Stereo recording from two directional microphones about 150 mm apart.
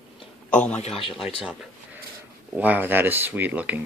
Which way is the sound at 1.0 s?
35° left (ahead or behind).